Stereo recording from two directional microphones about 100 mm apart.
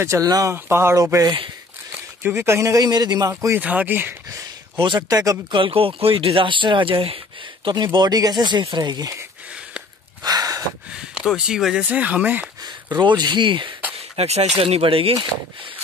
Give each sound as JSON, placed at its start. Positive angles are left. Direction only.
{"t": 0.0, "sound": "speech", "side_deg": -35}
{"t": 1.9, "sound": "speech", "side_deg": -20}
{"t": 3.5, "sound": "speech", "side_deg": -15}
{"t": 4.7, "sound": "speech", "side_deg": -50}
{"t": 5.1, "sound": "speech", "side_deg": -35}
{"t": 5.5, "sound": "speech", "side_deg": -65}
{"t": 7.6, "sound": "speech", "side_deg": -50}
{"t": 10.2, "sound": "gasp", "side_deg": -40}
{"t": 11.1, "sound": "speech", "side_deg": -5}
{"t": 12.9, "sound": "speech", "side_deg": -45}
{"t": 14.1, "sound": "speech", "side_deg": -90}
{"t": 14.6, "sound": "speech", "side_deg": -70}